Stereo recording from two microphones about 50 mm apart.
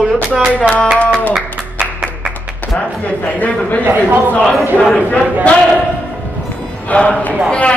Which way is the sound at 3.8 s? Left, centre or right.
Right.